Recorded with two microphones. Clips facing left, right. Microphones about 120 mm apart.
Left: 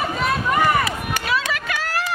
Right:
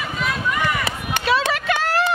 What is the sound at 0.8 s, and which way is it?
Run, 25° right (ahead or behind).